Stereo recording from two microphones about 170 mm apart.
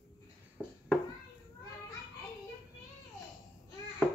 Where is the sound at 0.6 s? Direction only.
5° left (ahead or behind).